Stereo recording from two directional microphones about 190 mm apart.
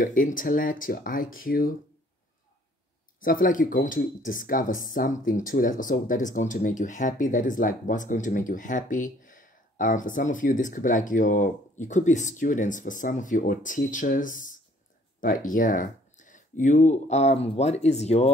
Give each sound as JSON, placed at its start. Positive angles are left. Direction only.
{"t": 0.0, "sound": "speech", "side_deg": 45}
{"t": 3.2, "sound": "speech", "side_deg": 45}